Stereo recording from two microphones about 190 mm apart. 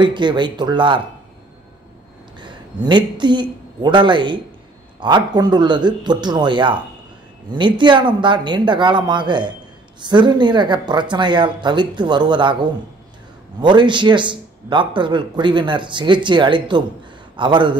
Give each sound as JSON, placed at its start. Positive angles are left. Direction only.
{"t": 0.0, "sound": "a man's voice", "side_deg": -25}
{"t": 2.4, "sound": "a man's voice", "side_deg": -25}
{"t": 13.6, "sound": "a man's voice", "side_deg": -25}